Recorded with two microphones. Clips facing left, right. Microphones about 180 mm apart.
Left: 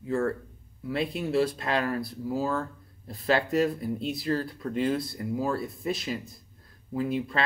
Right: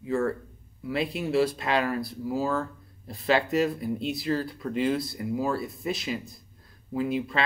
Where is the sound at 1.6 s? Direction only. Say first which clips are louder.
Right 2 dB; 45° left (ahead or behind).